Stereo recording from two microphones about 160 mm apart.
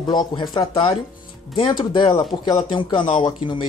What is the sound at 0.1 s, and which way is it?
Speech, 30° left (ahead or behind).